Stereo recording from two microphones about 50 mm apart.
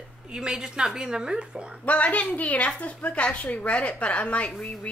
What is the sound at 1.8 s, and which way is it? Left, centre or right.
A woman's voice, left.